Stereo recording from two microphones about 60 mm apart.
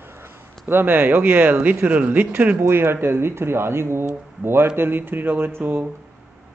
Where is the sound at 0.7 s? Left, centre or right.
Right.